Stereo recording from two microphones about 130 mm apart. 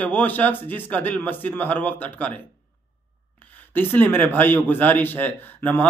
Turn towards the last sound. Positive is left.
turn(degrees=15)  # may be behind; listen again after turning